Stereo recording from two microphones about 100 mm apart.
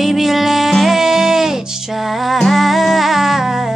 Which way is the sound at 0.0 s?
Centre (ahead or behind).